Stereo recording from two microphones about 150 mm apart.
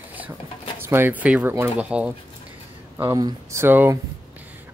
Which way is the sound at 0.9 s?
15° right (ahead or behind).